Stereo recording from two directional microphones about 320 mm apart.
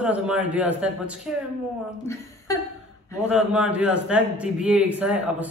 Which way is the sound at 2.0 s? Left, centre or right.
Centre.